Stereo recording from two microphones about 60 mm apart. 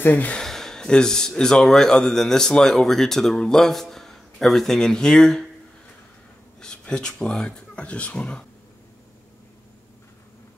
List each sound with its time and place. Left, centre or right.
0.0 s speech: left
0.4 s speech: centre
6.6 s speech: centre